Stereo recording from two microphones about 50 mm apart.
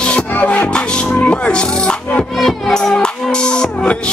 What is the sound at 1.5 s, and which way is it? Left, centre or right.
Speech, centre.